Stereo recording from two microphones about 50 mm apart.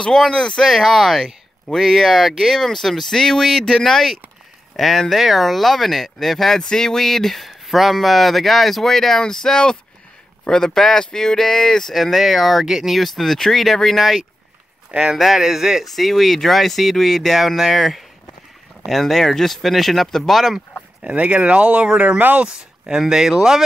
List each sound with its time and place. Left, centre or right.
0.0 s speech: centre
0.7 s speech: centre
14.9 s speech: right
15.1 s speech: centre
15.8 s speech: centre
21.0 s speech: right
22.2 s speech: right
22.8 s speech: centre